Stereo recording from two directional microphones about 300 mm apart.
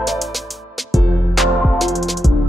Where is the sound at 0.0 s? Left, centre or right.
Centre.